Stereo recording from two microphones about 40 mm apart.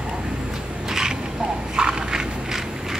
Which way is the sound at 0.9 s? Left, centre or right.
Centre.